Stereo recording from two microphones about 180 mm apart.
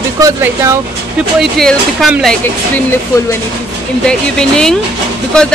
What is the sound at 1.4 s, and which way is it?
Speech, centre (ahead or behind).